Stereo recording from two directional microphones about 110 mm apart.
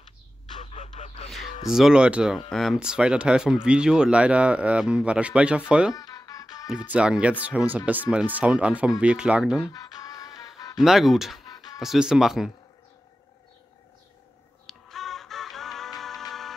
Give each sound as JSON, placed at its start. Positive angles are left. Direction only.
{"t": 0.6, "sound": "a sound", "side_deg": 85}
{"t": 1.3, "sound": "speech", "side_deg": 0}
{"t": 5.9, "sound": "music", "side_deg": 35}
{"t": 6.7, "sound": "speech", "side_deg": -10}
{"t": 9.7, "sound": "music", "side_deg": 35}
{"t": 10.8, "sound": "speech", "side_deg": 0}
{"t": 11.4, "sound": "music", "side_deg": 35}
{"t": 11.8, "sound": "speech", "side_deg": -5}
{"t": 14.7, "sound": "music", "side_deg": 5}